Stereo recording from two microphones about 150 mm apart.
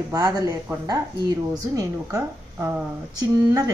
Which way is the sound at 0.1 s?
25° right (ahead or behind).